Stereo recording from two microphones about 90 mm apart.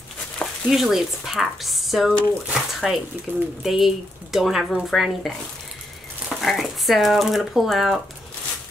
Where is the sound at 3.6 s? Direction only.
Centre (ahead or behind).